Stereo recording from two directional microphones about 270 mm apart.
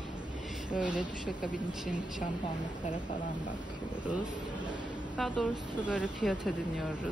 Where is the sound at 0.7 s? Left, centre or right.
Centre.